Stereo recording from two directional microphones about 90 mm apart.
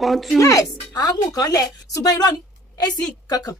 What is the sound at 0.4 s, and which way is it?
A woman's voice, 40° left (ahead or behind).